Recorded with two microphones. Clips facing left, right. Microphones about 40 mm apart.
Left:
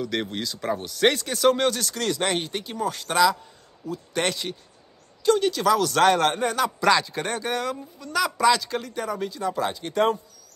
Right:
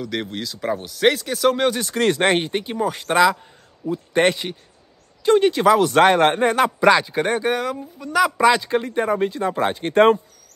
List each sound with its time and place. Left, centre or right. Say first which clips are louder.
0.0 s speech: right 1 dB; centre
1.7 s speech: right 6 dB; right
6.8 s speech: right 4 dB; right
8.4 s speech: right 4 dB; right